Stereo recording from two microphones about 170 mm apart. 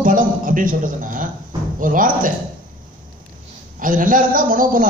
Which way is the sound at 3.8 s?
50° right (ahead or behind).